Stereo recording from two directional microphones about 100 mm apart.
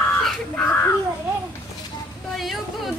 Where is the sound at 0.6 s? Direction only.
25° left (ahead or behind).